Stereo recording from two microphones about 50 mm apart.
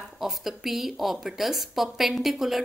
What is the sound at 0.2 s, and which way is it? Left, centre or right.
A woman's voice, centre.